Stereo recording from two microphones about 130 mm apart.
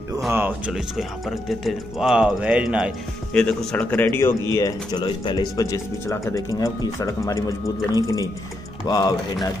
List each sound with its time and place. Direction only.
0.3 s speech: 15° right (ahead or behind)
3.3 s speech: 10° left (ahead or behind); by 9.5 s 30° left (ahead or behind)